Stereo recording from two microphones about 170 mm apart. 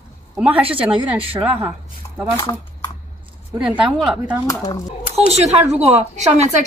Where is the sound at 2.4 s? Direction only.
25° left (ahead or behind).